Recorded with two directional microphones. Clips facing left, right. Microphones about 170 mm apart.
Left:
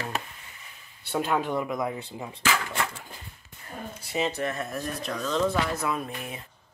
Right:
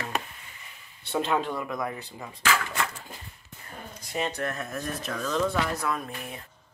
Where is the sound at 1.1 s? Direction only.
5° left (ahead or behind).